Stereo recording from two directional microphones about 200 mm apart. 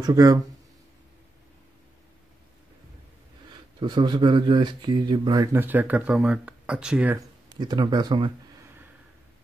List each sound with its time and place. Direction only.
0.0 s speech: 20° right (ahead or behind)
3.8 s speech: 20° right (ahead or behind)
7.5 s speech: 20° right (ahead or behind)